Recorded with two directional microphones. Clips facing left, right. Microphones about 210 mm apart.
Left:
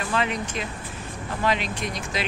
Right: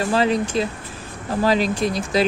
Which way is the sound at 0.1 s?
35° right (ahead or behind).